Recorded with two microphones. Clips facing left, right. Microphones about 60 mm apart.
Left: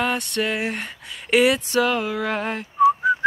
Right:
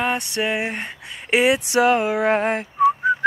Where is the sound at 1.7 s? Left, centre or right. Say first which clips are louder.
Right 4 dB; right.